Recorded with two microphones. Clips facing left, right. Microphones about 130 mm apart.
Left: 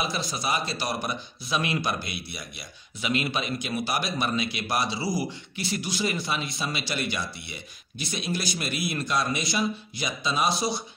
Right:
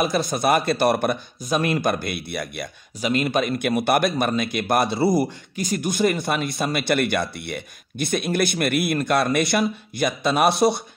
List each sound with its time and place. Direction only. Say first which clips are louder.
0.0 s speech: right 9 dB; 50° right (ahead or behind)
3.0 s speech: right 7 dB; 45° right (ahead or behind)